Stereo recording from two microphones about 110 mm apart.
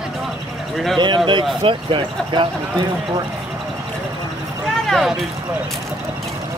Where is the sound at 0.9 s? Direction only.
45° right (ahead or behind).